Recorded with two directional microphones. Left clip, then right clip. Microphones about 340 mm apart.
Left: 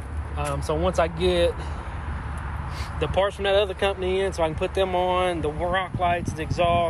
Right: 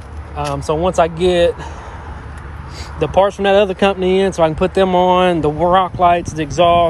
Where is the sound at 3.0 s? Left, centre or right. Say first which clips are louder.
Right 10 dB; centre.